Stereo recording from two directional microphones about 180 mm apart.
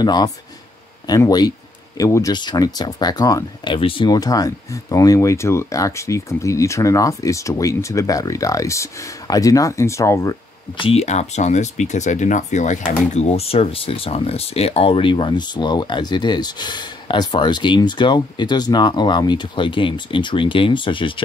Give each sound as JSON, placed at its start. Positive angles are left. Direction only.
{"t": 0.0, "sound": "speech", "side_deg": 20}
{"t": 10.8, "sound": "speech", "side_deg": 35}